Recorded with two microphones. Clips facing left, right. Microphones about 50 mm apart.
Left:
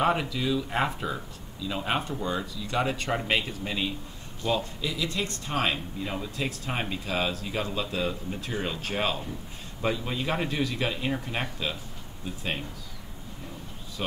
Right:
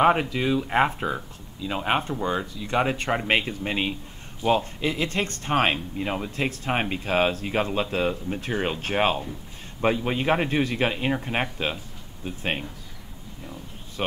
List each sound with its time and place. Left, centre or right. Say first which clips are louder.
0.0 s speech: right 5 dB; right